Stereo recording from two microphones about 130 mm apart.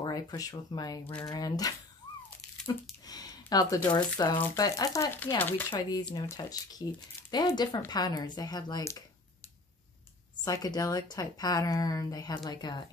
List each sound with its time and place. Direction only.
0.0 s a woman's voice: 30° left (ahead or behind)
3.1 s a woman's voice: 30° left (ahead or behind)
5.7 s a woman's voice: 35° left (ahead or behind)
10.4 s a woman's voice: 30° left (ahead or behind)